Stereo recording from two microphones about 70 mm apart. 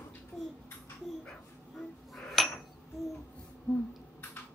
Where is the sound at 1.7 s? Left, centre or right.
Centre.